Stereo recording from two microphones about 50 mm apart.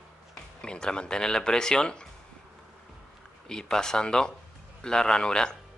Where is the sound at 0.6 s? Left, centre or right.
Centre.